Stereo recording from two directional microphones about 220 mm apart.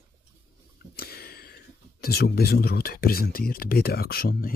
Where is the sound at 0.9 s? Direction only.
45° left (ahead or behind).